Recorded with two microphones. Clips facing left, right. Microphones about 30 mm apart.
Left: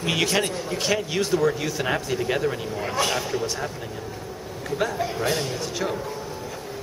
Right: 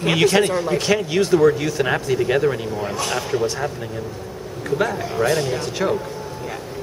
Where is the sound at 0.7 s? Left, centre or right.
Centre.